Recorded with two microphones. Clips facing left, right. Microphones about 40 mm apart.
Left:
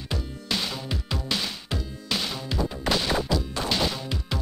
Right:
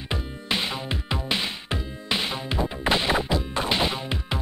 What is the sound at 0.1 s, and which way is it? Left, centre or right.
Music, right.